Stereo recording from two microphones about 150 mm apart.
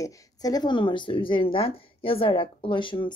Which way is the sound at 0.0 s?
25° left (ahead or behind).